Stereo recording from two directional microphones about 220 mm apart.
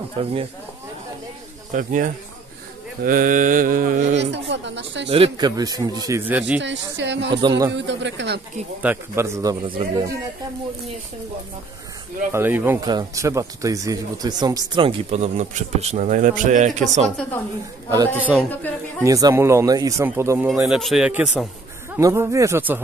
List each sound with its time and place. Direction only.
0.2 s speech: 25° right (ahead or behind)
1.7 s mantra: 35° right (ahead or behind)
4.2 s speech: 55° right (ahead or behind)
5.1 s a man's voice: 25° right (ahead or behind); by 6.6 s 5° right (ahead or behind)
6.6 s speech: 55° right (ahead or behind)
7.4 s a man's voice: 15° right (ahead or behind)
7.7 s speech: 55° right (ahead or behind)
8.8 s a man's voice: 10° right (ahead or behind)
12.3 s speech: 10° right (ahead or behind); by 17.1 s 30° right (ahead or behind)
17.8 s a man's voice: 10° right (ahead or behind)
18.3 s a man's voice: 5° left (ahead or behind)
19.0 s a man's voice: 15° right (ahead or behind)